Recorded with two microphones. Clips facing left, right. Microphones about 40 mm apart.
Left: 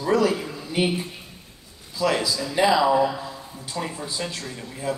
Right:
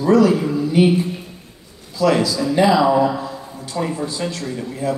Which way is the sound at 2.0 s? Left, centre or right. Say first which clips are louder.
Right 6 dB; centre.